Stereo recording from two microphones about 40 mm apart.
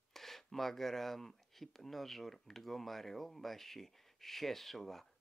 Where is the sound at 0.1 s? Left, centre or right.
Centre.